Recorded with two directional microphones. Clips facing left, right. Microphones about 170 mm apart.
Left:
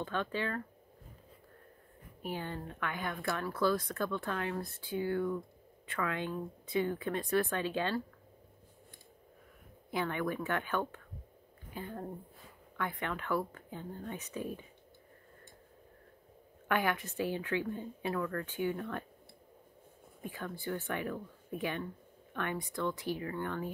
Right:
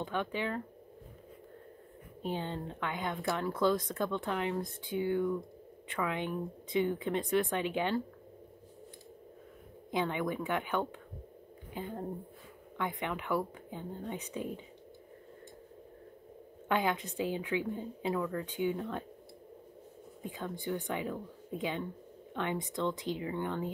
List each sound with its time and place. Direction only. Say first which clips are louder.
0.0 s a woman's voice: right 1 dB; 15° right (ahead or behind)
2.2 s speech: right 3 dB; 20° right (ahead or behind)
9.8 s a woman's voice: right 2 dB; 20° right (ahead or behind)
16.6 s a woman's voice: right 1 dB; 20° right (ahead or behind)
20.2 s speech: right 2 dB; 20° right (ahead or behind)